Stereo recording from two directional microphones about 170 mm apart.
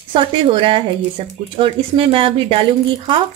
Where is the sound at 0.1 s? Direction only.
30° right (ahead or behind).